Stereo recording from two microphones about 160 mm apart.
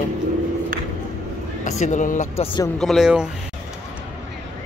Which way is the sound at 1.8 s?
50° left (ahead or behind).